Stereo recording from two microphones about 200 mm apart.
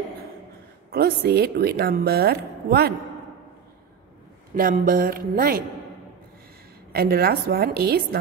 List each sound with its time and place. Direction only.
0.9 s a woman's voice: 50° right (ahead or behind)
4.6 s a woman's voice: 45° right (ahead or behind)
6.9 s a woman's voice: 50° right (ahead or behind)